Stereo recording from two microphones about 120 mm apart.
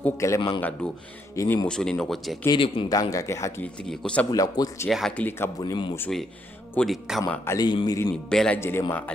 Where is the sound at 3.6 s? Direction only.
5° left (ahead or behind).